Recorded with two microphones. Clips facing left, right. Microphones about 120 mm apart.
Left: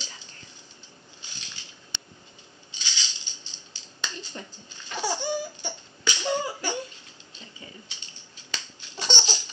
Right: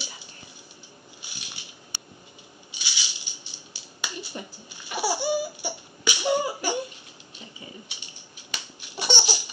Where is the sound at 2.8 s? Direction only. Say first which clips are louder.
Even; 15° right (ahead or behind).